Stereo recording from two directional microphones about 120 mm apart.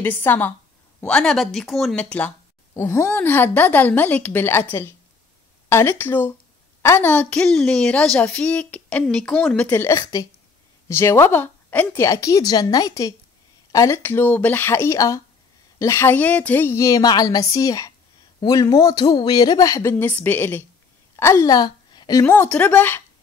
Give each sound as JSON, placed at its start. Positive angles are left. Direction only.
{"t": 0.0, "sound": "a woman's voice", "side_deg": 15}
{"t": 2.7, "sound": "a woman's voice", "side_deg": 25}
{"t": 9.8, "sound": "speech", "side_deg": 25}
{"t": 12.0, "sound": "a woman's voice", "side_deg": 25}
{"t": 22.2, "sound": "a woman's voice", "side_deg": 15}